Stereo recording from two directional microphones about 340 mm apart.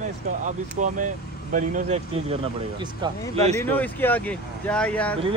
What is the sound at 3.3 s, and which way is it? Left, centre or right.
Speech, centre.